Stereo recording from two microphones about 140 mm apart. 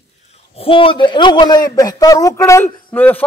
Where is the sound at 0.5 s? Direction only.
40° left (ahead or behind).